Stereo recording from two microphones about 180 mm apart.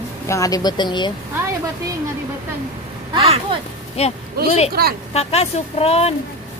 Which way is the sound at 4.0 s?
35° left (ahead or behind).